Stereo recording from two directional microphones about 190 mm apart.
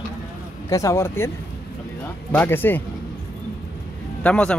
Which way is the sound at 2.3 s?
10° left (ahead or behind).